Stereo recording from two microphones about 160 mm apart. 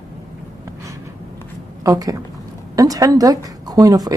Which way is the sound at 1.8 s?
20° right (ahead or behind).